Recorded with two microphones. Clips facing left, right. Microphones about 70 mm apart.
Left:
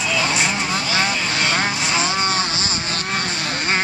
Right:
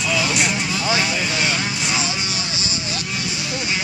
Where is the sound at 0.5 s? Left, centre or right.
Left.